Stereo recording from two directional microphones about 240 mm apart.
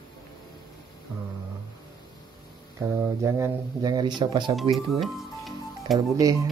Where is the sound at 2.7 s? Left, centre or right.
Centre.